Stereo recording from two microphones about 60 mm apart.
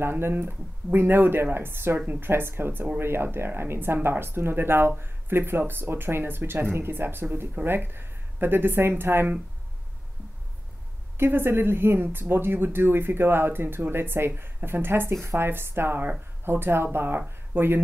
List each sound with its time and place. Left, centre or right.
0.0 s speech: right
11.1 s speech: right